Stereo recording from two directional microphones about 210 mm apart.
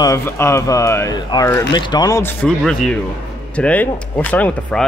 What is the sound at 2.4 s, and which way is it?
Speech, 5° left (ahead or behind).